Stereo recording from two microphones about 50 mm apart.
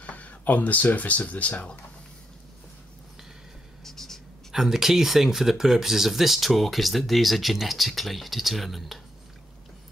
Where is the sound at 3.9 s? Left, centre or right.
Centre.